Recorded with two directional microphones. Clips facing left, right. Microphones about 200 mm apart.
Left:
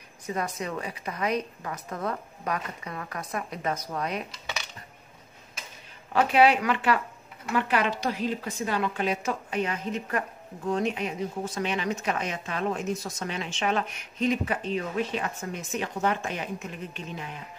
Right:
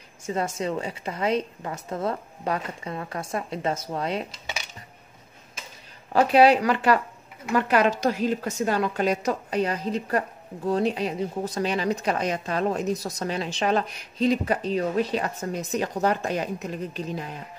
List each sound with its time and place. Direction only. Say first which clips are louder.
0.6 s speech: right 5 dB; 25° right (ahead or behind)
6.1 s a woman's voice: right 4 dB; 35° right (ahead or behind)